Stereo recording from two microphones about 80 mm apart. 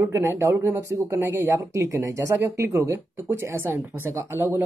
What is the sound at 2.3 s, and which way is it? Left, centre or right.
Speech, right.